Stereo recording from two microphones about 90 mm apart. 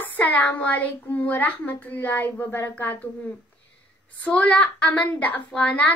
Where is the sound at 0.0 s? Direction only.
20° left (ahead or behind).